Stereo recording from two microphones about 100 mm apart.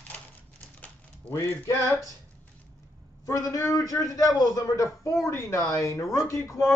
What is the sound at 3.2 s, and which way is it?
Speech, 35° left (ahead or behind).